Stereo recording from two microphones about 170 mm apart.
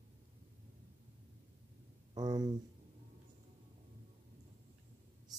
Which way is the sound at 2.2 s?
25° right (ahead or behind).